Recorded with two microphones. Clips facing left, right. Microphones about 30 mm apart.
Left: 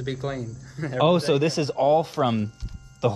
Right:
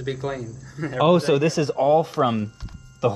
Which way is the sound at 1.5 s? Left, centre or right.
Left.